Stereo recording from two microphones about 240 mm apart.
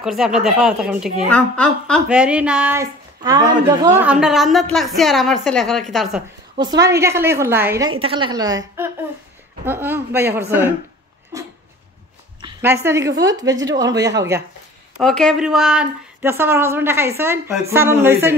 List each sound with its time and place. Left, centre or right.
0.0 s a woman's voice: centre
6.8 s speech: centre
8.0 s speech: right
11.3 s a sound: centre
12.8 s speech: centre
15.0 s speech: centre